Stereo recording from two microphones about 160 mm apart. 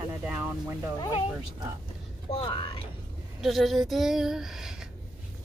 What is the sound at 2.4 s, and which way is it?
Speech, 30° left (ahead or behind).